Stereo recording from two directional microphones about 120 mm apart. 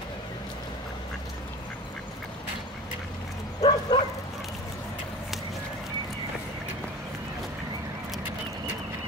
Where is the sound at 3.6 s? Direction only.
35° left (ahead or behind).